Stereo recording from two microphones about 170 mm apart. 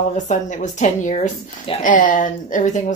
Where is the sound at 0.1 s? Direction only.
45° left (ahead or behind).